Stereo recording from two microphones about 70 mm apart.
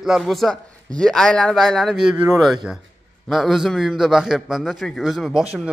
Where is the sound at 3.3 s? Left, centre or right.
Centre.